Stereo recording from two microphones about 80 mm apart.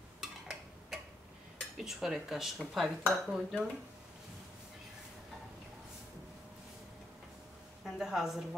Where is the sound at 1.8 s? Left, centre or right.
Centre.